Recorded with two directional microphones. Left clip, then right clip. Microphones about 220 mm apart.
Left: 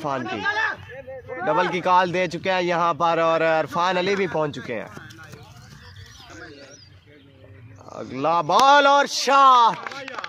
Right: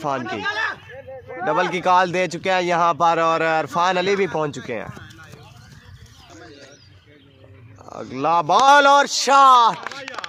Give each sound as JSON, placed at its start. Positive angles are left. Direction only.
{"t": 0.2, "sound": "speech", "side_deg": -50}
{"t": 1.4, "sound": "speech", "side_deg": -15}
{"t": 7.8, "sound": "speech", "side_deg": -15}
{"t": 9.8, "sound": "chop", "side_deg": -50}